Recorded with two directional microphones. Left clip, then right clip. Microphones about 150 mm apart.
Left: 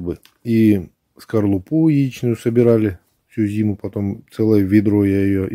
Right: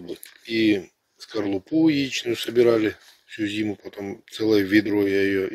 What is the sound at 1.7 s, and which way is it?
Speech, 15° left (ahead or behind).